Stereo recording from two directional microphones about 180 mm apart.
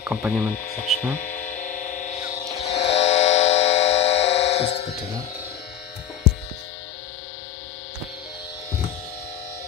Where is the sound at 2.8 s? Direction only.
35° left (ahead or behind).